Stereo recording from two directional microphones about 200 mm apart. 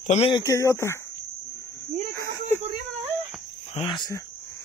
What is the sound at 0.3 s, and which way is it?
Cattle, 20° left (ahead or behind).